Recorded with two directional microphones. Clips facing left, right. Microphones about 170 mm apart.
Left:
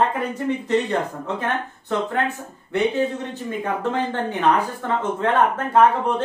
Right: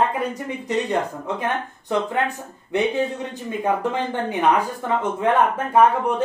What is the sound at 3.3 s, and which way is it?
Speech, 15° right (ahead or behind).